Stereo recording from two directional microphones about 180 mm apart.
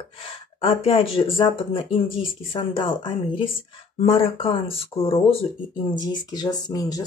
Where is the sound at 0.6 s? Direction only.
30° left (ahead or behind).